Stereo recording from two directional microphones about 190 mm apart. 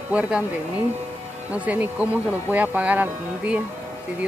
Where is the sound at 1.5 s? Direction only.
10° right (ahead or behind).